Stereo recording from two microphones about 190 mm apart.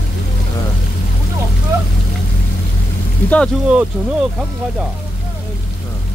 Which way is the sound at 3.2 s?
10° left (ahead or behind).